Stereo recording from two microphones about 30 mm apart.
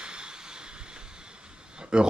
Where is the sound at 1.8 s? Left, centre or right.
Right.